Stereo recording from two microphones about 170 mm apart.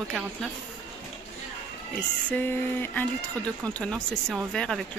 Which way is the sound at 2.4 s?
10° left (ahead or behind).